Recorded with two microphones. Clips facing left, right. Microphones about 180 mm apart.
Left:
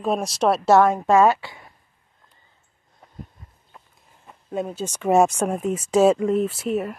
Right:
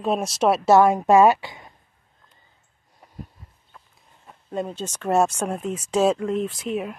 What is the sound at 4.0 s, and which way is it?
Speech, centre (ahead or behind).